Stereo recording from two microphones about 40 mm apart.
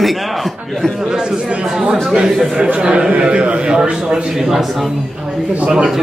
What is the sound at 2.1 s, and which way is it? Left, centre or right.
A man's voice, centre.